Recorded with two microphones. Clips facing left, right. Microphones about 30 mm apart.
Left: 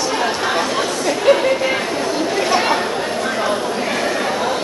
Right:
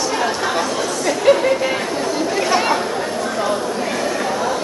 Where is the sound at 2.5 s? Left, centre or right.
Centre.